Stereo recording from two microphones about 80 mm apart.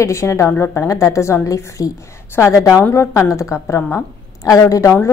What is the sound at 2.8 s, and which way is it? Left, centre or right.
A woman's voice, left.